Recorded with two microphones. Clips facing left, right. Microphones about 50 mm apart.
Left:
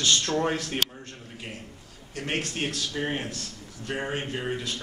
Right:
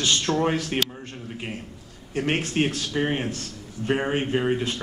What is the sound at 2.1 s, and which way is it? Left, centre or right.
A man's voice, right.